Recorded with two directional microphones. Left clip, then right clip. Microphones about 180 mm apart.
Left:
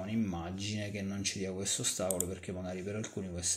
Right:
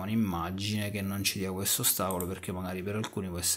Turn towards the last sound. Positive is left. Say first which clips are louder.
# right 4 dB
turn(degrees=-40)  # may be behind; listen again after turning